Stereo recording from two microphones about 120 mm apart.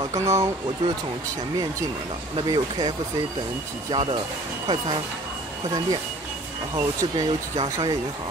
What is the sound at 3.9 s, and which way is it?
Speech, 45° right (ahead or behind).